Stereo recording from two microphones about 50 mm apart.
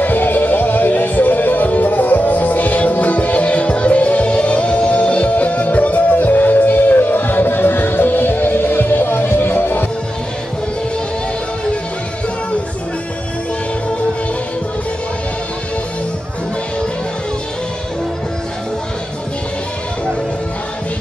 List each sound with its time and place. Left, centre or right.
0.0 s music: left